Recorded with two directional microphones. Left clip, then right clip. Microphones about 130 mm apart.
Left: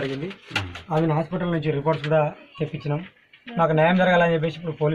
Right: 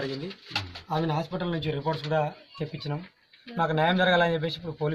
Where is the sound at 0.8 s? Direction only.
15° right (ahead or behind).